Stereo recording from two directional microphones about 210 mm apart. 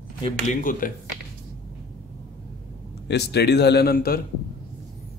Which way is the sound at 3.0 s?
50° left (ahead or behind).